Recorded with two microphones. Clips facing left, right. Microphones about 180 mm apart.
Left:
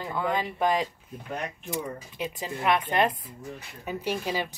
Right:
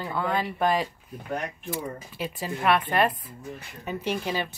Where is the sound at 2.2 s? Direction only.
15° left (ahead or behind).